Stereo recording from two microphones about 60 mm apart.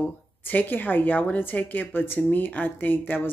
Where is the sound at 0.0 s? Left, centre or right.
Left.